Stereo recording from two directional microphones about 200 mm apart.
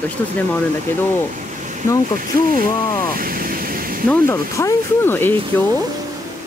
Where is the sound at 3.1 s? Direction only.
45° right (ahead or behind).